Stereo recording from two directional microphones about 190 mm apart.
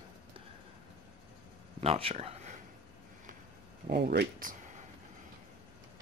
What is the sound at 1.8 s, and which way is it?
Speech, 30° right (ahead or behind).